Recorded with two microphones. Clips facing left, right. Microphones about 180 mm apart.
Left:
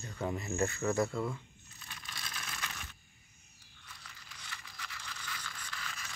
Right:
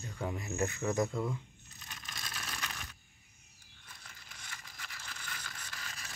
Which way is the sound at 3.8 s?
45° right (ahead or behind).